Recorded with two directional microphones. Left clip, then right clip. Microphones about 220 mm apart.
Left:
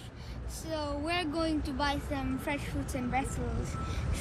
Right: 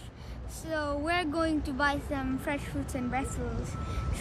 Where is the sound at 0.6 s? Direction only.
15° right (ahead or behind).